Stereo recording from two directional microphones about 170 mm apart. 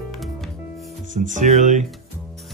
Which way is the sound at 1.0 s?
45° right (ahead or behind).